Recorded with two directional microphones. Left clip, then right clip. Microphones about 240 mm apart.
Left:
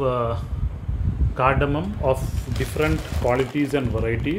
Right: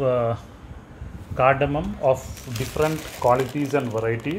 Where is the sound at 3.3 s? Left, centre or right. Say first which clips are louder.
Even; centre.